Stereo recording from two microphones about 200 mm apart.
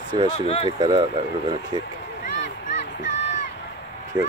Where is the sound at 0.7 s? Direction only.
20° right (ahead or behind).